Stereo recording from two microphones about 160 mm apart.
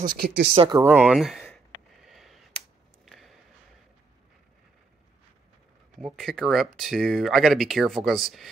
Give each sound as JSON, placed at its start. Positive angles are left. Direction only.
{"t": 0.1, "sound": "speech", "side_deg": -75}
{"t": 0.7, "sound": "speech", "side_deg": -10}
{"t": 2.0, "sound": "a sound", "side_deg": 0}
{"t": 5.9, "sound": "speech", "side_deg": 0}